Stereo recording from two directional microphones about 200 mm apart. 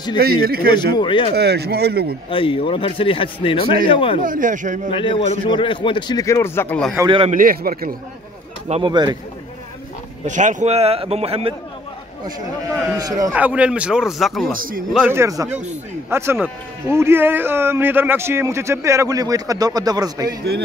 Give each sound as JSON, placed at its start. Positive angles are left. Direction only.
{"t": 0.2, "sound": "speech", "side_deg": -50}
{"t": 0.9, "sound": "a man's voice", "side_deg": 25}
{"t": 1.3, "sound": "speech", "side_deg": -55}
{"t": 2.2, "sound": "a man's voice", "side_deg": 25}
{"t": 4.2, "sound": "speech", "side_deg": -40}
{"t": 4.9, "sound": "a man's voice", "side_deg": 25}
{"t": 7.0, "sound": "speech", "side_deg": -25}
{"t": 7.2, "sound": "speech", "side_deg": -45}
{"t": 8.6, "sound": "speech", "side_deg": -25}
{"t": 10.2, "sound": "speech", "side_deg": -40}
{"t": 12.9, "sound": "speech", "side_deg": -20}
{"t": 13.3, "sound": "a man's voice", "side_deg": -5}
{"t": 15.1, "sound": "speech", "side_deg": -15}